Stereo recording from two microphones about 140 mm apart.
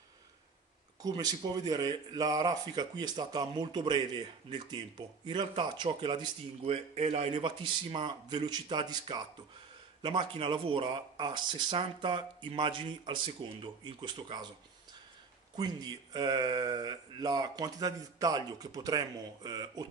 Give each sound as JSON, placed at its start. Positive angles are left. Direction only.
{"t": 1.0, "sound": "speech", "side_deg": -30}
{"t": 15.5, "sound": "speech", "side_deg": -30}